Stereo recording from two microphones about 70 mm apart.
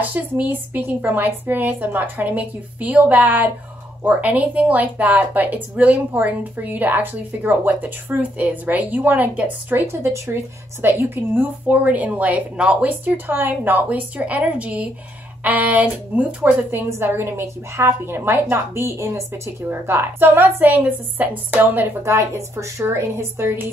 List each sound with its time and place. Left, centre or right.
0.0 s speech: right
10.0 s speech: right
10.8 s speech: right
16.7 s a woman's voice: right